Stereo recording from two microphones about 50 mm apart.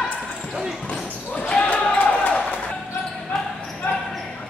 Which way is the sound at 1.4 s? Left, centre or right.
Left.